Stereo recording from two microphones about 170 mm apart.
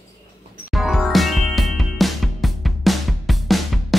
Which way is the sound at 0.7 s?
Centre (ahead or behind).